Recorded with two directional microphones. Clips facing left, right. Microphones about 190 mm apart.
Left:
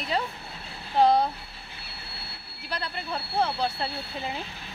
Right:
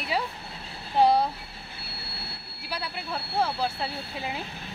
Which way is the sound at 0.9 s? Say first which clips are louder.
Even; 10° right (ahead or behind).